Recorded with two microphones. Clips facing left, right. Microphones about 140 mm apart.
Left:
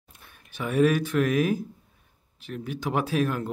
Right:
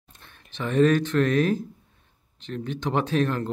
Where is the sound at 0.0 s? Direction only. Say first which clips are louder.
Right 1 dB; 10° left (ahead or behind).